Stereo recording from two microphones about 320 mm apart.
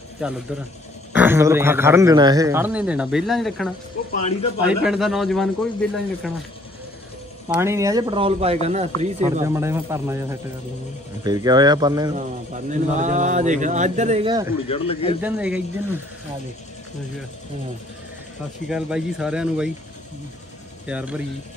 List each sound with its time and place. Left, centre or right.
0.2 s a man's voice: centre
7.4 s a man's voice: centre
9.4 s a man's voice: centre
11.2 s a man's voice: centre
12.2 s speech: right
14.7 s a man's voice: centre
15.2 s a man's voice: centre
18.7 s a man's voice: centre
20.8 s a man's voice: centre